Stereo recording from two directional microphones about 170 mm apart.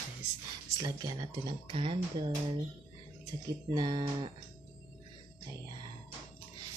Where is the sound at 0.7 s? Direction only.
25° right (ahead or behind).